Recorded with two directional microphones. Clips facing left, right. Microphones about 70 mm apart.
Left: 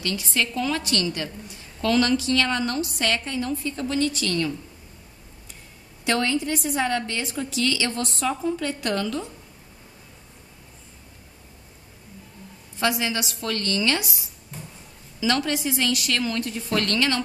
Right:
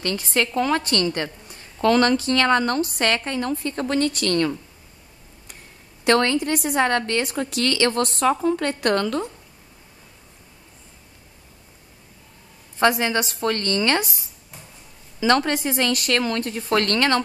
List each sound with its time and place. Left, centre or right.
0.0 s a woman's voice: right
6.0 s a woman's voice: right
12.7 s speech: right
14.5 s a sound: centre
15.1 s a woman's voice: right